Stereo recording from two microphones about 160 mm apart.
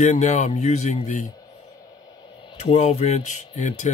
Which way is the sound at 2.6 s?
45° left (ahead or behind).